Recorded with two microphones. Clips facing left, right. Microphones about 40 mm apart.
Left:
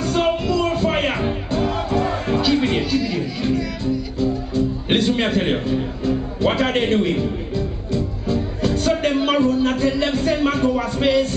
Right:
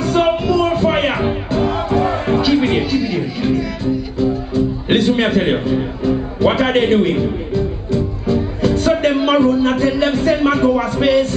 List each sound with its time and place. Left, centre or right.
0.0 s music: centre